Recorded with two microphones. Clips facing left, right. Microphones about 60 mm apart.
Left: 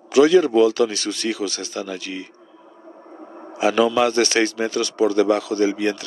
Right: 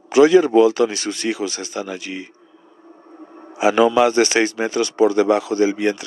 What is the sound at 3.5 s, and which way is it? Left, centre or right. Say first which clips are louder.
Speech: right 3 dB; centre.